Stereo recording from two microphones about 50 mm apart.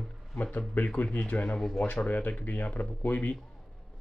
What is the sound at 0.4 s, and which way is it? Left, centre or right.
Speech, left.